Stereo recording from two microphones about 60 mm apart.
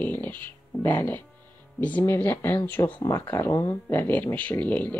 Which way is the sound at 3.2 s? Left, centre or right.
Left.